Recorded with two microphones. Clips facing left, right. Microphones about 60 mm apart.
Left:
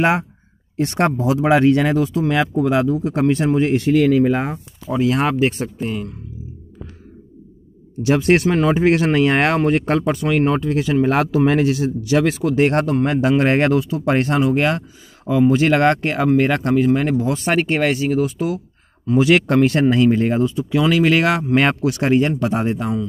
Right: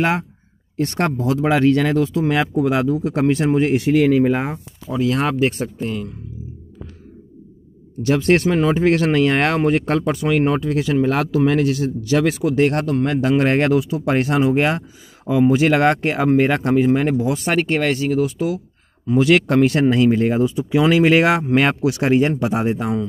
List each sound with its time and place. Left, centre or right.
0.0 s speech: left
2.0 s speech: centre
4.8 s speech: left
5.1 s speech: centre
8.0 s speech: centre
11.1 s speech: left
12.0 s speech: centre
12.6 s speech: left
13.3 s speech: centre
13.7 s speech: centre
14.4 s speech: centre
17.5 s speech: centre
20.4 s speech: centre